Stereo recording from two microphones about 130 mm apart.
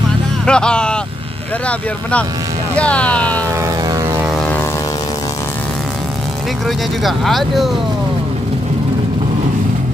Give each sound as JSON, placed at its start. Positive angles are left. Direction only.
{"t": 0.5, "sound": "speech", "side_deg": 5}
{"t": 3.4, "sound": "vehicle", "side_deg": -25}
{"t": 7.0, "sound": "speech", "side_deg": 0}